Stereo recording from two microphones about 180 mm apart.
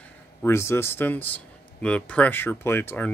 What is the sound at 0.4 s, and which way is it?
A man's voice, 15° left (ahead or behind).